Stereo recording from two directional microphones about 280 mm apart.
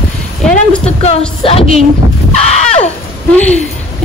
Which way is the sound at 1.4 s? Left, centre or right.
Left.